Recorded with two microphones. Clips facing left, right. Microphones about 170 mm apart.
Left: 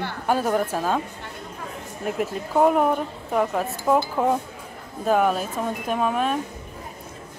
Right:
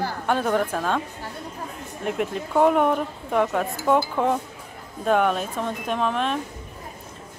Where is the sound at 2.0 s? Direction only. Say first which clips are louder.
Even; centre (ahead or behind).